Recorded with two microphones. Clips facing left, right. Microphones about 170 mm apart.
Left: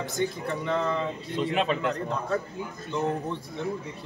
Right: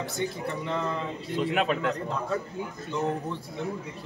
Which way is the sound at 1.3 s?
5° right (ahead or behind).